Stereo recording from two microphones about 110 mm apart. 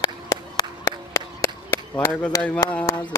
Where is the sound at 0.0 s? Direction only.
35° left (ahead or behind).